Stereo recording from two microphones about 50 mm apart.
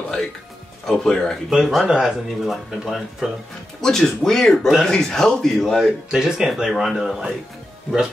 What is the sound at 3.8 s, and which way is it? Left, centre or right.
Speech, centre.